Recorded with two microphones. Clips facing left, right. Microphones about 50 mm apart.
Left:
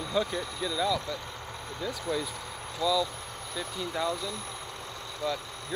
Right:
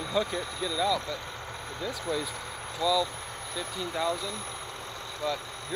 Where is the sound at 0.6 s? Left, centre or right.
Left.